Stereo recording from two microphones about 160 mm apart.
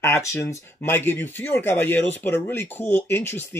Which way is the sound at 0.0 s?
15° left (ahead or behind).